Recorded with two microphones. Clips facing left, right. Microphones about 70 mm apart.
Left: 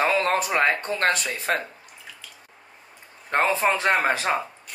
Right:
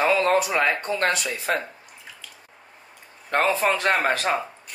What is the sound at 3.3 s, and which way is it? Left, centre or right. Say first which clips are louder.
A man's voice: even; left.